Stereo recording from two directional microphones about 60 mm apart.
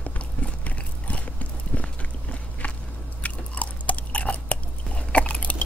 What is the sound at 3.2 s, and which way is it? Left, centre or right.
Chewing, left.